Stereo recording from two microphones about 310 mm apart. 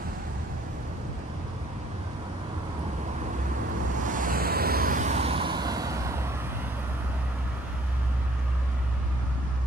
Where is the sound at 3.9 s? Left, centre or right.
Right; by 6.4 s centre.